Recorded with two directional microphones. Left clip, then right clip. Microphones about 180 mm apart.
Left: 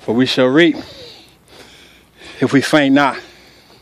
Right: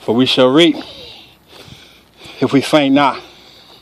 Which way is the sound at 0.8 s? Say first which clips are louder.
Right 2 dB; 20° left (ahead or behind).